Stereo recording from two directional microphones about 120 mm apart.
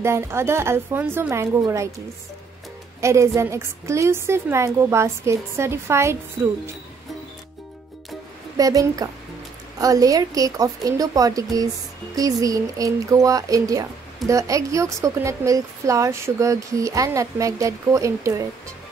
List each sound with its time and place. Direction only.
0.0 s speech: 20° right (ahead or behind)
3.0 s speech: 25° right (ahead or behind)
8.5 s speech: 30° right (ahead or behind)